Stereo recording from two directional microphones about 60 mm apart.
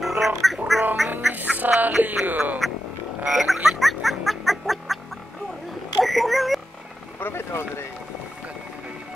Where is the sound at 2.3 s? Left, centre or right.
Right.